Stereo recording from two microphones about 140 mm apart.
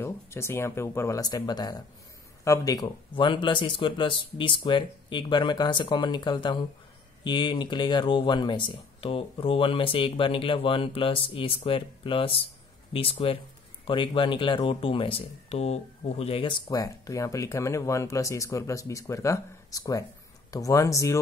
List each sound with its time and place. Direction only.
0.0 s speech: 20° left (ahead or behind); by 16.7 s 40° left (ahead or behind)
16.7 s speech: 25° left (ahead or behind)